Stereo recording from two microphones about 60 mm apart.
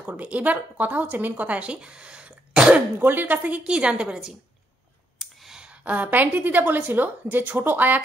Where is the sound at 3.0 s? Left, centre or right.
Right; by 4.3 s centre.